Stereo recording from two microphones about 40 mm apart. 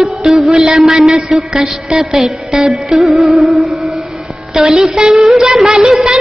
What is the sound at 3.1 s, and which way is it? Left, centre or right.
Music, centre.